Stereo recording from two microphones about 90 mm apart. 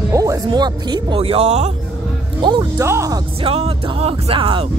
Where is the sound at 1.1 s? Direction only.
90° right.